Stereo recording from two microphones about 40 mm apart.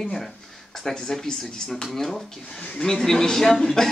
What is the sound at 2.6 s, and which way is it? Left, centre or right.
Speech, left.